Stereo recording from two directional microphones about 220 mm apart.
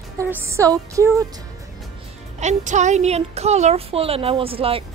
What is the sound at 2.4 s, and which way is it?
A woman's voice, 30° right (ahead or behind).